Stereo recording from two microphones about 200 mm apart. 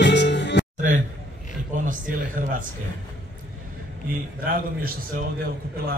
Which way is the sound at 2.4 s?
40° right (ahead or behind).